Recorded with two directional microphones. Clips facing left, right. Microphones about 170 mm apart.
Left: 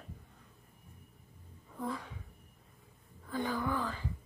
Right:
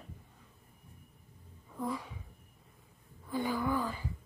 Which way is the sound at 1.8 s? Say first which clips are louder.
Right 2 dB; 10° right (ahead or behind).